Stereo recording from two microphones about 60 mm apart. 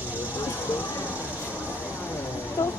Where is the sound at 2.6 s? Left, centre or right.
Left.